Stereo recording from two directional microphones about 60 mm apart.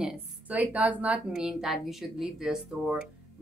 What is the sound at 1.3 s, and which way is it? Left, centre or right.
Speech, centre.